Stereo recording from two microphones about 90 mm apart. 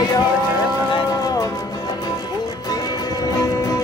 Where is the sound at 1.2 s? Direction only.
45° left (ahead or behind).